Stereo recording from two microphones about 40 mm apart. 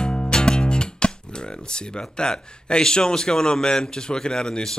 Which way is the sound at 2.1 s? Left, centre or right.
Left.